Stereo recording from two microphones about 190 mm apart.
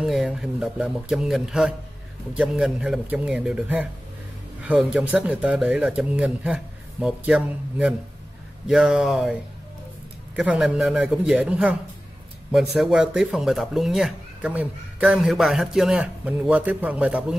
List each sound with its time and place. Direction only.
0.0 s a man's voice: centre (ahead or behind)
12.7 s speech: 5° right (ahead or behind)